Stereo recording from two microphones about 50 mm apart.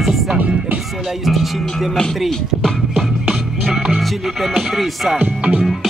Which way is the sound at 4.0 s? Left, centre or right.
Centre.